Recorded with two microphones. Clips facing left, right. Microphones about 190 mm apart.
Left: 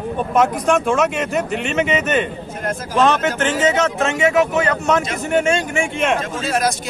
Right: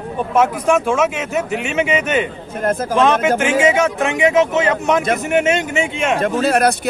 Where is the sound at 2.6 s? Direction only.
55° right (ahead or behind).